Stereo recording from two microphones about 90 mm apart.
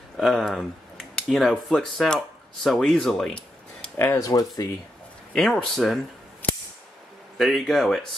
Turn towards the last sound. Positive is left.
turn(degrees=0)  # may be behind; listen again after turning